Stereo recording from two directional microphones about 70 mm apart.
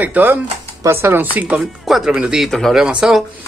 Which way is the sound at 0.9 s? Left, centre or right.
Right.